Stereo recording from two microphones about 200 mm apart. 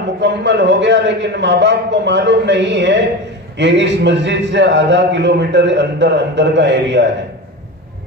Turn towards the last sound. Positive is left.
turn(degrees=-60)  # may be behind; listen again after turning